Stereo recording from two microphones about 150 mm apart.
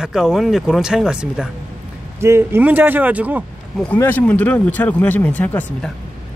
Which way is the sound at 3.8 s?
10° left (ahead or behind).